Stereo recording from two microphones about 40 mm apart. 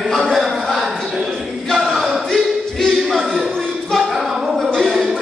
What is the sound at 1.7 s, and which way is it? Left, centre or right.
A capella, centre.